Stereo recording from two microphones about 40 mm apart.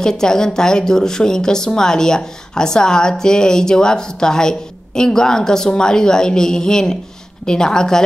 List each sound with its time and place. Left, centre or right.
0.0 s speech: centre